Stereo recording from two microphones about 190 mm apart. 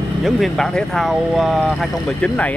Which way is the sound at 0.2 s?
Centre (ahead or behind).